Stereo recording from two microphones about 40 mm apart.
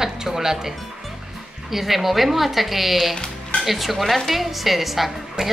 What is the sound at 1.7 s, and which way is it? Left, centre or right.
A woman's voice, centre.